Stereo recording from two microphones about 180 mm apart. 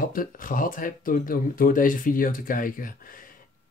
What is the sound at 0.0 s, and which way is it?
Speech, 50° left (ahead or behind).